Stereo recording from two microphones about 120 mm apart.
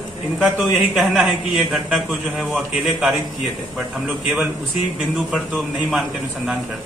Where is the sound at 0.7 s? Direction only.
Centre (ahead or behind).